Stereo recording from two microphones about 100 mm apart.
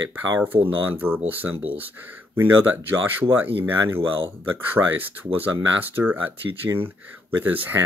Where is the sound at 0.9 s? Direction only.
20° right (ahead or behind).